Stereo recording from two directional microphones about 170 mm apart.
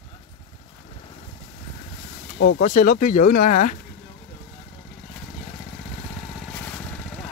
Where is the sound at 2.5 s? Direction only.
50° left (ahead or behind).